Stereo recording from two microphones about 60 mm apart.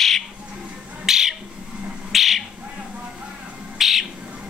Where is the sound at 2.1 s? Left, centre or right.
Centre.